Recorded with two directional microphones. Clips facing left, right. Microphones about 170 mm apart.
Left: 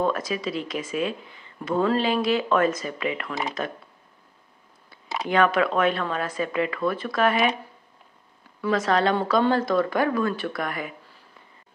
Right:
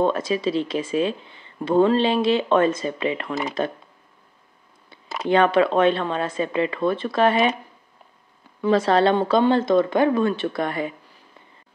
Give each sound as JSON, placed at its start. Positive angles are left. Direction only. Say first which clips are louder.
{"t": 0.0, "sound": "speech", "louder": "right 4 dB", "side_deg": -25}
{"t": 5.0, "sound": "a sound", "louder": "right 2 dB", "side_deg": 0}
{"t": 5.3, "sound": "speech", "louder": "right 4 dB", "side_deg": -30}
{"t": 8.5, "sound": "speech", "louder": "right 4 dB", "side_deg": -30}